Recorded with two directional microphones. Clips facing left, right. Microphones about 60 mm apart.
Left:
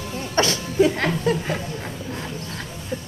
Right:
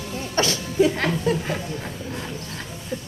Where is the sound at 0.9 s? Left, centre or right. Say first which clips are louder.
Left 1 dB; centre.